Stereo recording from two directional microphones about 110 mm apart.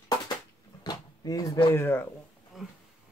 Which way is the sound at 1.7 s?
20° left (ahead or behind).